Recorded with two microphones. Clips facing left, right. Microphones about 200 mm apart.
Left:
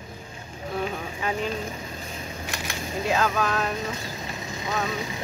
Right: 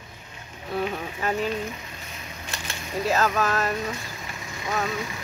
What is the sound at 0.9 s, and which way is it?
Speech, centre (ahead or behind).